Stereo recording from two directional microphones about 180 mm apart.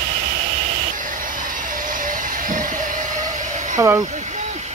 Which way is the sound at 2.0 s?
45° right (ahead or behind).